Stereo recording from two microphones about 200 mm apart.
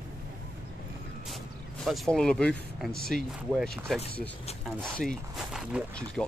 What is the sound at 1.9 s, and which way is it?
Speech, centre (ahead or behind).